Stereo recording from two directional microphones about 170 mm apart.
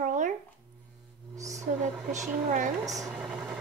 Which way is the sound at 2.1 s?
45° right (ahead or behind).